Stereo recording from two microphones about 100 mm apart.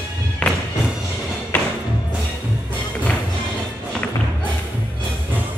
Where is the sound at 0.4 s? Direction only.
10° left (ahead or behind).